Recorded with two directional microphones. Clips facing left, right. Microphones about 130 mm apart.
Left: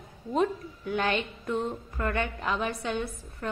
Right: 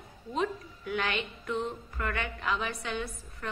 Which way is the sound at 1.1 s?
45° left (ahead or behind).